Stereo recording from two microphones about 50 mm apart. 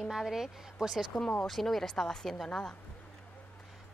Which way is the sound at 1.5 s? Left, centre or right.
Centre.